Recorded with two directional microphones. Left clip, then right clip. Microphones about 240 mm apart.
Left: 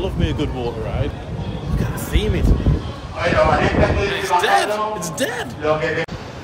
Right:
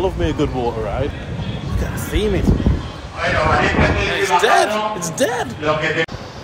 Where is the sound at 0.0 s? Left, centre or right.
Centre.